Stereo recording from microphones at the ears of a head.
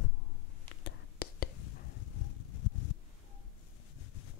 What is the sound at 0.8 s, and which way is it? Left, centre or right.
Whispering, left.